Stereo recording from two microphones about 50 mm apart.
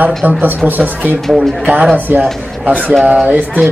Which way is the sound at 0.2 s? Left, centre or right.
Right.